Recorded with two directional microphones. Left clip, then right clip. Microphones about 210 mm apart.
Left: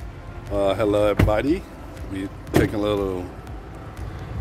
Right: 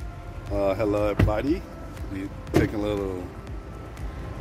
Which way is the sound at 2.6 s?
25° left (ahead or behind).